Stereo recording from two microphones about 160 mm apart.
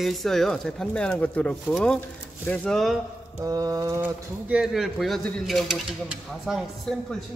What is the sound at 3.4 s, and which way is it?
Bird, 20° right (ahead or behind).